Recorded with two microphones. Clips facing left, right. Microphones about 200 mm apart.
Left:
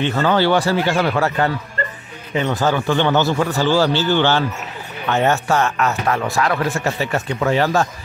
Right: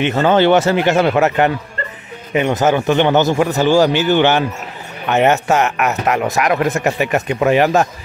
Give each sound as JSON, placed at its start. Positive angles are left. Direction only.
{"t": 0.0, "sound": "speech", "side_deg": -20}